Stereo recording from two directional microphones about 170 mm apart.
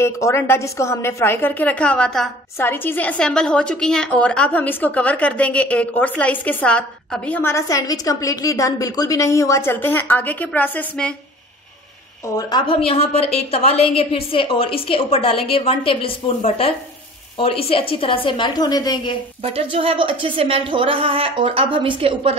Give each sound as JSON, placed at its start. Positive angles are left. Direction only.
{"t": 0.0, "sound": "a woman's voice", "side_deg": 15}
{"t": 12.4, "sound": "a woman's voice", "side_deg": 25}
{"t": 19.4, "sound": "a woman's voice", "side_deg": -35}